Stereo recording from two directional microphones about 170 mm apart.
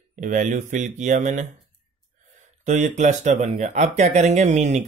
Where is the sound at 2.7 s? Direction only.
45° right (ahead or behind).